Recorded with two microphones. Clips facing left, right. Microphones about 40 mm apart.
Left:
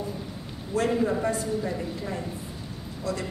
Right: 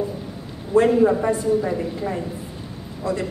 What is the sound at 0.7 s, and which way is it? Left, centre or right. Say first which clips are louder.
A woman's voice: right 9 dB; centre.